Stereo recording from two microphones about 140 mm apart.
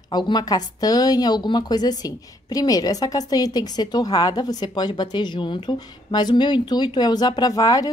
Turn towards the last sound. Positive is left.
turn(degrees=25)  # may be behind; listen again after turning